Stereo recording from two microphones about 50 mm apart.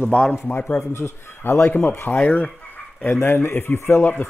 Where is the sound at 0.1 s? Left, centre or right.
Centre.